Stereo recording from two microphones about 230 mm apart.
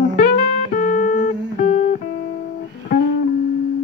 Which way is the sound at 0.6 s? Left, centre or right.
Left.